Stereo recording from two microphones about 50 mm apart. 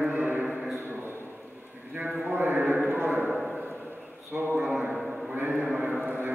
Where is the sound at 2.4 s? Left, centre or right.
Right.